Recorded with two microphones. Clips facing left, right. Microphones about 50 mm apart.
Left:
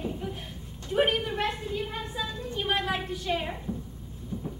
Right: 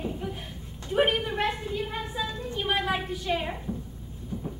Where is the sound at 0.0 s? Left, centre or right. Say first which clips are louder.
Right 1 dB; centre.